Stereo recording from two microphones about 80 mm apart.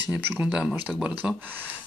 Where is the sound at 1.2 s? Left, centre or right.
Centre.